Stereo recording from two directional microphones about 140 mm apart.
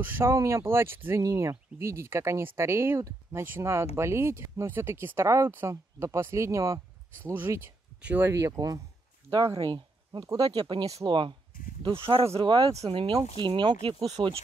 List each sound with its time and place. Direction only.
0.0 s speech: 15° right (ahead or behind); by 14.0 s 35° right (ahead or behind)